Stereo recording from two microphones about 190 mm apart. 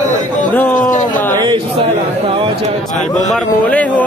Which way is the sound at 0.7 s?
40° left (ahead or behind).